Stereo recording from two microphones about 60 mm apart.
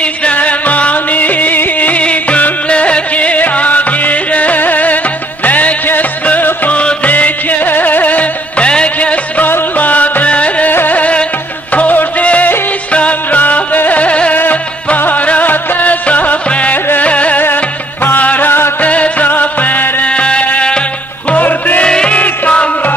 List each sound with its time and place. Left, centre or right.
0.0 s music: left
10.7 s middle eastern music: left
11.7 s music: left
18.9 s music: left
21.8 s music: centre